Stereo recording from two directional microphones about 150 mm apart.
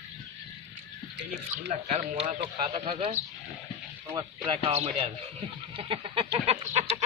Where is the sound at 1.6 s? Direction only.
50° right (ahead or behind).